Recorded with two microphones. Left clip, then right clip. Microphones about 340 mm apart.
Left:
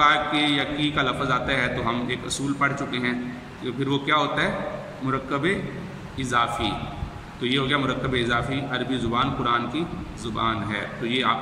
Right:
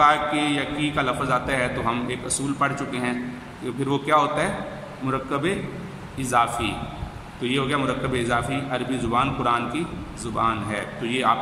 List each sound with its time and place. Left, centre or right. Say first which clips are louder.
0.0 s a man's voice: right 1 dB; centre